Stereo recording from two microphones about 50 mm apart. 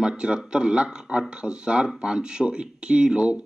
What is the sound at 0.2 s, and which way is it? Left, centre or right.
A man's voice, centre.